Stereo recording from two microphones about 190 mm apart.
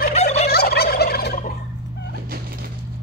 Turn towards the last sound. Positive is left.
turn(degrees=50)  # may be behind; listen again after turning